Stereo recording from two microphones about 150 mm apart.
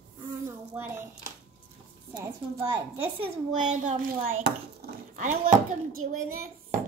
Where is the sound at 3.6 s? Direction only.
55° right (ahead or behind).